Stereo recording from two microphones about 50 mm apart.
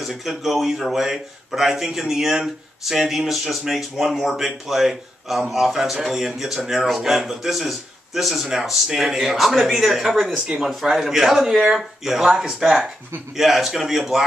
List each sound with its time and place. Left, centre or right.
0.0 s a man's voice: centre
10.3 s speech: centre
10.7 s a man's voice: centre